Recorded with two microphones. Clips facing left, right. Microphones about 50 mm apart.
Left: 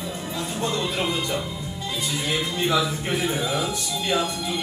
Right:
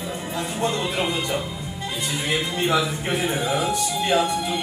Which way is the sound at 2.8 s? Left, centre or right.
Right.